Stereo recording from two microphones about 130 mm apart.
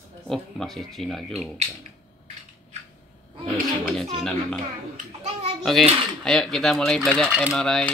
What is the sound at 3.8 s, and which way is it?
Speech, 5° left (ahead or behind).